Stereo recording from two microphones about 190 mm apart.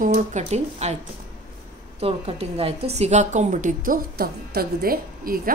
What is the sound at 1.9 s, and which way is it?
A woman's voice, 30° right (ahead or behind).